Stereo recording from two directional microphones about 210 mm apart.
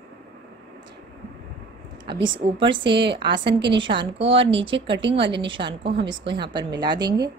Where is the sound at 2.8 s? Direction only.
55° right (ahead or behind).